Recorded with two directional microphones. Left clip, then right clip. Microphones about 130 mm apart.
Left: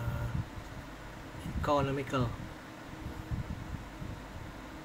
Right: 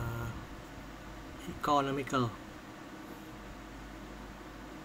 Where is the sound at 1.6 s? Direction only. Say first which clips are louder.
Right 1 dB; 30° right (ahead or behind).